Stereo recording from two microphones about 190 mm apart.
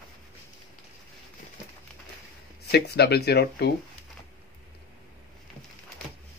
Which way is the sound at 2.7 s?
60° left (ahead or behind).